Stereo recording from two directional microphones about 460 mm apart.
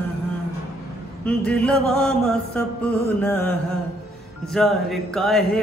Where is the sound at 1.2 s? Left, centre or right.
Centre.